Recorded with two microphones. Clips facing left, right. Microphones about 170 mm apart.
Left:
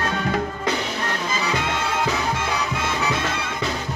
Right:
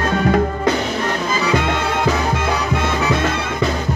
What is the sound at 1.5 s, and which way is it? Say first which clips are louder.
Music: right 6 dB; 55° right (ahead or behind).